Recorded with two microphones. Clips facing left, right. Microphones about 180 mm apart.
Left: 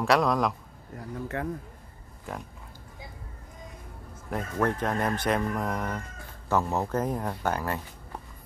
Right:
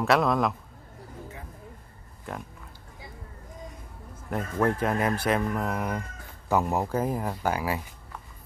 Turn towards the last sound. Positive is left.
turn(degrees=-10)  # may be behind; listen again after turning